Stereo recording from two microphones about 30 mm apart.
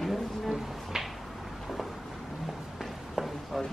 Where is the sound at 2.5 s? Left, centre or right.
Centre.